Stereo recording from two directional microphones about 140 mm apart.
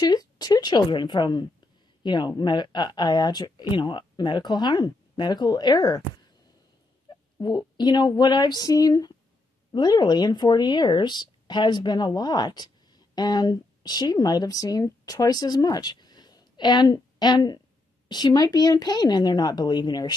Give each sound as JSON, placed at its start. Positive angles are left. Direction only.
{"t": 0.0, "sound": "speech", "side_deg": 30}
{"t": 7.3, "sound": "speech", "side_deg": 30}